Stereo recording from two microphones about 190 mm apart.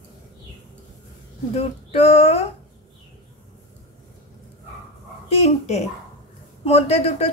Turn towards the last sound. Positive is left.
turn(degrees=35)  # may be behind; listen again after turning